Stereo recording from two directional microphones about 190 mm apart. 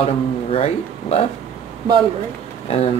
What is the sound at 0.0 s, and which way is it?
Speech, 30° left (ahead or behind).